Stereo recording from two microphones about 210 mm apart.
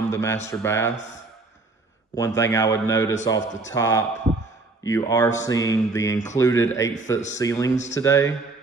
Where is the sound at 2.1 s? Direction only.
15° left (ahead or behind).